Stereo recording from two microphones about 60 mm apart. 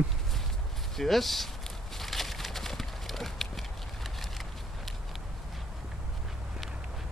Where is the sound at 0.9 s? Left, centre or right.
Centre.